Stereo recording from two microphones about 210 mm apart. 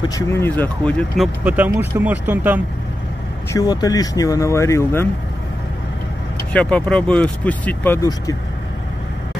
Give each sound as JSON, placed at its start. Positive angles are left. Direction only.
{"t": 0.1, "sound": "speech", "side_deg": 10}
{"t": 3.5, "sound": "speech", "side_deg": 20}
{"t": 6.5, "sound": "speech", "side_deg": 5}